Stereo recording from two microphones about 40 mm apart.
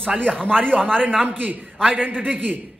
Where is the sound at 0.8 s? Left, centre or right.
Centre.